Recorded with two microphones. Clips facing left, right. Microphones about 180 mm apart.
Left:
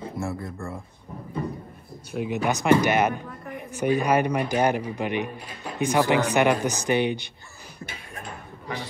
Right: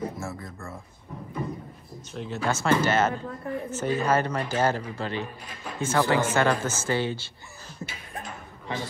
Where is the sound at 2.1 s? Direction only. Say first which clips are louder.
Left 4 dB; 10° left (ahead or behind).